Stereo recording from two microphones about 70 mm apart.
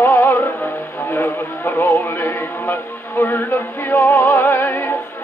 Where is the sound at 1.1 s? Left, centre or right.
Left.